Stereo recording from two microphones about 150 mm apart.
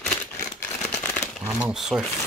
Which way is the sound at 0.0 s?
15° left (ahead or behind).